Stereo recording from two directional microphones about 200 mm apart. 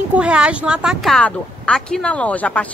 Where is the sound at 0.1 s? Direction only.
5° right (ahead or behind).